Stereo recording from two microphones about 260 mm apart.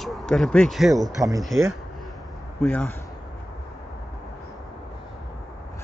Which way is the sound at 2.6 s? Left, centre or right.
Centre.